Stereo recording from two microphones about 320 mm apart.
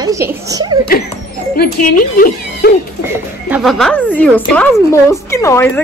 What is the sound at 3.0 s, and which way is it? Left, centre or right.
Speech, centre.